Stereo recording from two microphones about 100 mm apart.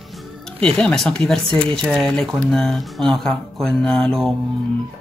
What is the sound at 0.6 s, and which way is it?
Speech, 10° left (ahead or behind).